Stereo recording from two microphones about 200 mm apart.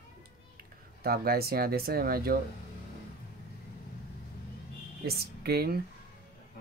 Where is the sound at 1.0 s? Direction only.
50° right (ahead or behind).